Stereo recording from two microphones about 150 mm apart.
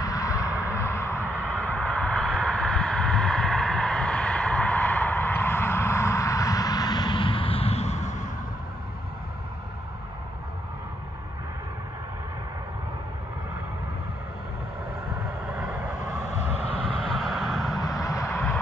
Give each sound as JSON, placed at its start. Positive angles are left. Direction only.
{"t": 0.0, "sound": "a sound", "side_deg": 20}
{"t": 15.5, "sound": "vehicle", "side_deg": -10}
{"t": 16.3, "sound": "vehicle", "side_deg": 45}
{"t": 16.8, "sound": "vehicle", "side_deg": 5}
{"t": 17.7, "sound": "vehicle", "side_deg": 25}